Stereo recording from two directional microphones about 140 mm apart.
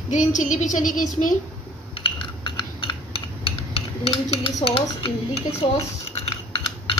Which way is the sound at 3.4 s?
45° left (ahead or behind).